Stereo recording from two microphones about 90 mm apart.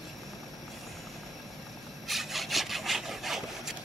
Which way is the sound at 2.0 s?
Centre (ahead or behind).